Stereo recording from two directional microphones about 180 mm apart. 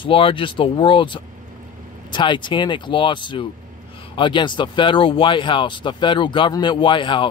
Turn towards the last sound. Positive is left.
turn(degrees=25)  # may be behind; listen again after turning